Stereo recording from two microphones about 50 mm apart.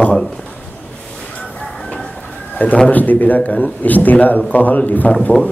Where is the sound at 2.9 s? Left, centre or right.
Left.